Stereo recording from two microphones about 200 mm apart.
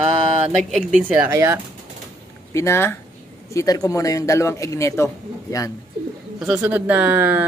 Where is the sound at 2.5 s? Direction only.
15° left (ahead or behind).